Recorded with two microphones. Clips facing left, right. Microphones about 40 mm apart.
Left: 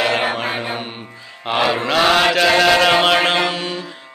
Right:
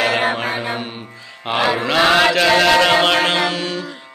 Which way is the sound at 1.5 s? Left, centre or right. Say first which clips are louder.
Even; centre.